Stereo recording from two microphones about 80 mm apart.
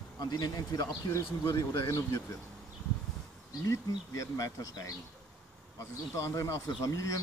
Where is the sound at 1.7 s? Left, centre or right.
Left.